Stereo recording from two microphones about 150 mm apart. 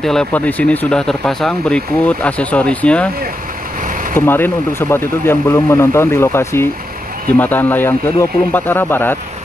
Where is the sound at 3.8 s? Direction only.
60° right (ahead or behind).